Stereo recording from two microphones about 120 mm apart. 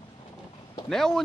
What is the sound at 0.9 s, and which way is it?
Speech, 5° left (ahead or behind).